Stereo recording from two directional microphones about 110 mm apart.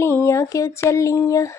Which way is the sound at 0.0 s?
20° left (ahead or behind).